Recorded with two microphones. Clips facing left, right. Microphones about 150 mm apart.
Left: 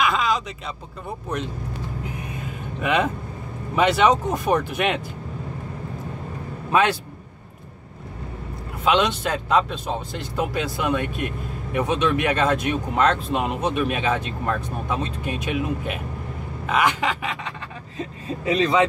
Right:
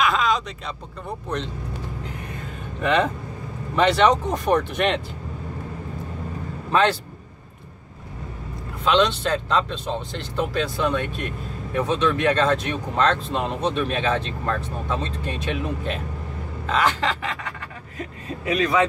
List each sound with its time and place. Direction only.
0.0 s a sound: centre (ahead or behind)
1.0 s speech: 5° left (ahead or behind)
2.8 s speech: 10° left (ahead or behind)
6.7 s a man's voice: 10° left (ahead or behind)
8.8 s speech: 10° left (ahead or behind)